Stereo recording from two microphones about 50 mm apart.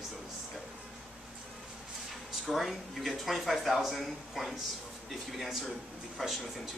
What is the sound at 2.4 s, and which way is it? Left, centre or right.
Speech, centre.